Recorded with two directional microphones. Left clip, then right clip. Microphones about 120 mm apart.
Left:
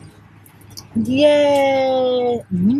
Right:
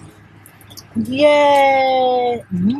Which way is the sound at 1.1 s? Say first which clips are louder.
Right 2 dB; 15° left (ahead or behind).